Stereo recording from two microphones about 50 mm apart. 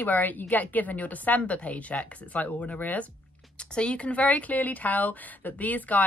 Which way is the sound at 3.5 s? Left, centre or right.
Left.